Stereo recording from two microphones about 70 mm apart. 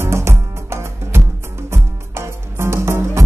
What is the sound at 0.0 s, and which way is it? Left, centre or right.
Music, right.